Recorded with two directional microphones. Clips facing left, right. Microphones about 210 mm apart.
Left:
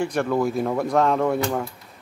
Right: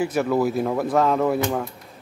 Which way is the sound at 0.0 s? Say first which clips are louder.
Right 1 dB; 5° right (ahead or behind).